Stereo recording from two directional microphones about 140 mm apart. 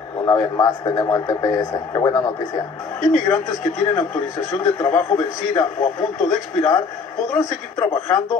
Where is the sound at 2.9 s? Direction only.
60° left (ahead or behind).